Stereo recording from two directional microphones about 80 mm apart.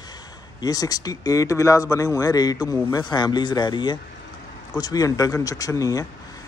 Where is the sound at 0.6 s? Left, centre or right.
Left.